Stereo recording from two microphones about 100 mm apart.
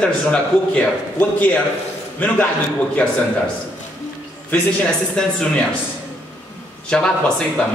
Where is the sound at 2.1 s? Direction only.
15° left (ahead or behind).